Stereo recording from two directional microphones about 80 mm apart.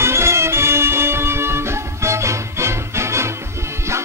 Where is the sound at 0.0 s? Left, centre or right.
Right.